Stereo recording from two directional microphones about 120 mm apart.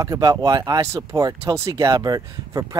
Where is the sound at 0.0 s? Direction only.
30° right (ahead or behind).